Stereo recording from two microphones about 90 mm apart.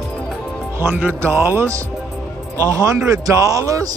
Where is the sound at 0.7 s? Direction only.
20° right (ahead or behind).